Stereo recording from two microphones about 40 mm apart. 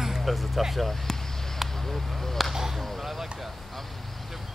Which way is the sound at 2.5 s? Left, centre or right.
Centre.